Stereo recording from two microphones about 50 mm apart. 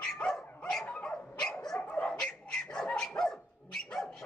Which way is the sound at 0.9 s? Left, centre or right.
Left.